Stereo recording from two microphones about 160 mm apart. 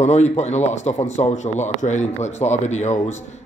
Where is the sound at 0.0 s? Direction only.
45° left (ahead or behind).